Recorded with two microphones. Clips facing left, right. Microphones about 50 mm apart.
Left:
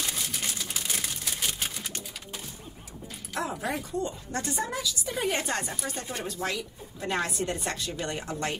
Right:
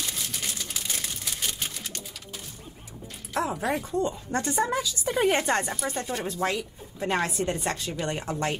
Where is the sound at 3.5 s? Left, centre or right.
Centre.